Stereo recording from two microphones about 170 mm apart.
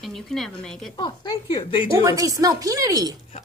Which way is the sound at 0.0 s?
Centre (ahead or behind).